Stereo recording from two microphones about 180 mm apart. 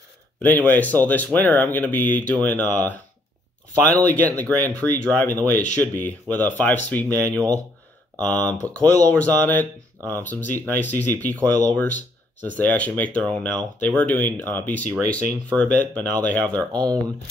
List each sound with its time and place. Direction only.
0.4 s speech: 10° left (ahead or behind)
7.2 s speech: 20° right (ahead or behind)
8.2 s speech: 10° left (ahead or behind)
12.5 s speech: 10° left (ahead or behind)
16.7 s speech: 20° right (ahead or behind)